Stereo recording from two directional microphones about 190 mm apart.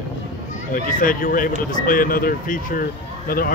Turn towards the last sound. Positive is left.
turn(degrees=50)  # may be behind; listen again after turning